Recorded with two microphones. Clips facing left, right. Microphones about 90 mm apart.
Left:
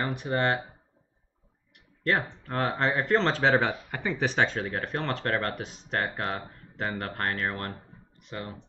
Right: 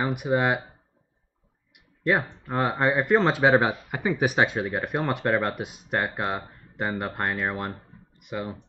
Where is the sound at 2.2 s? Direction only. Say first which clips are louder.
Right 3 dB; 5° right (ahead or behind).